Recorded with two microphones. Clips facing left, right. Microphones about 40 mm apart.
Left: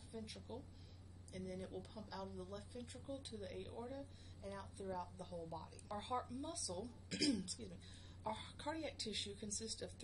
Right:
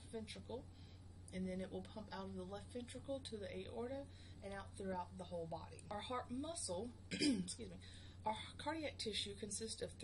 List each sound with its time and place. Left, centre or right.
0.1 s speech: right
1.3 s speech: centre